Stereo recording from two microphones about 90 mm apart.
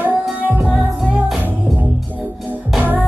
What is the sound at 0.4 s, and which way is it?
Music, 20° right (ahead or behind).